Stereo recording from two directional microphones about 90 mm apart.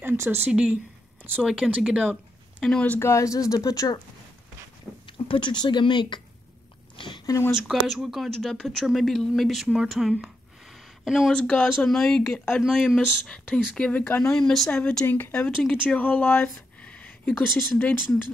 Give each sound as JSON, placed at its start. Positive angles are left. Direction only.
{"t": 0.0, "sound": "a sound", "side_deg": -25}
{"t": 0.5, "sound": "speech", "side_deg": -10}
{"t": 2.6, "sound": "speech", "side_deg": 10}
{"t": 3.0, "sound": "speech", "side_deg": 35}
{"t": 5.0, "sound": "speech", "side_deg": 75}
{"t": 7.0, "sound": "a sound", "side_deg": 60}
{"t": 7.5, "sound": "speech", "side_deg": 0}
{"t": 9.7, "sound": "a sound", "side_deg": -5}
{"t": 11.3, "sound": "speech", "side_deg": 10}
{"t": 14.7, "sound": "speech", "side_deg": 15}